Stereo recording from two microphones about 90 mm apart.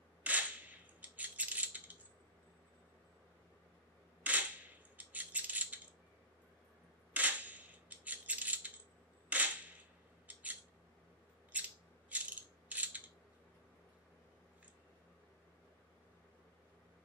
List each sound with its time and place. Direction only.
0.2 s cap gun: 15° right (ahead or behind)
4.2 s cap gun: 15° right (ahead or behind)
4.9 s a sound: 15° right (ahead or behind)
7.2 s coin: 15° right (ahead or behind)
9.3 s cap gun: 15° right (ahead or behind)
10.2 s a sound: 15° right (ahead or behind)
12.1 s ratchet: 15° right (ahead or behind)